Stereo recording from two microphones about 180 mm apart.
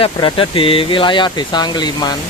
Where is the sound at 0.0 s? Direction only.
30° left (ahead or behind).